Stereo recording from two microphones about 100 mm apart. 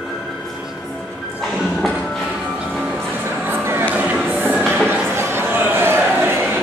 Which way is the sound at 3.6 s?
20° right (ahead or behind).